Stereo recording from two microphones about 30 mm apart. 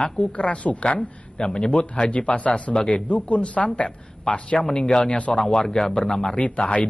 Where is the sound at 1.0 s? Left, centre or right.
Left.